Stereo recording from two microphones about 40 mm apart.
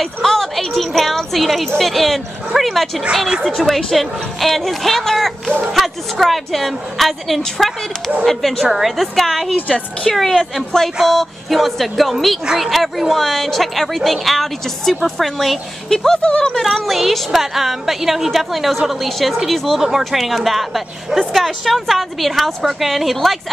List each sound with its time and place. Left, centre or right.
0.0 s a sound: centre
1.8 s a woman's voice: centre
8.6 s a woman's voice: centre
16.2 s speech: left
16.6 s a woman's voice: centre